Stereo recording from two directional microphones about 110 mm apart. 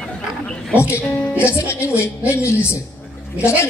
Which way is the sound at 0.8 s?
25° left (ahead or behind).